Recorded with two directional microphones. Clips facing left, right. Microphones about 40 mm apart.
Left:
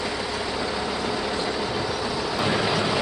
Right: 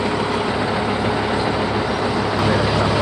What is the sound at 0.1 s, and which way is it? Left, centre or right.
Vehicle, right.